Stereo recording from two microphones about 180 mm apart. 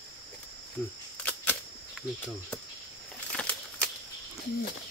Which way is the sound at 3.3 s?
5° left (ahead or behind).